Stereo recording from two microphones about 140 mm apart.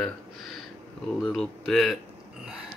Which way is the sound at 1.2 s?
Centre (ahead or behind).